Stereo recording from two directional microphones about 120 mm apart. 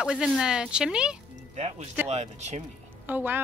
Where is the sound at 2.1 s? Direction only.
70° right (ahead or behind).